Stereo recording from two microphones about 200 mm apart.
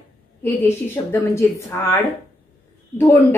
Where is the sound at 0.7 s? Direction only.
10° left (ahead or behind).